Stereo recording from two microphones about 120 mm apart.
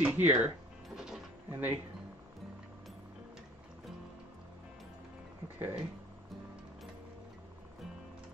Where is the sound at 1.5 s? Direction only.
15° right (ahead or behind).